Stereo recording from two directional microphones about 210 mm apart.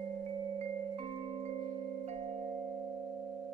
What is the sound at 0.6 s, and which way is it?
Music, 30° right (ahead or behind).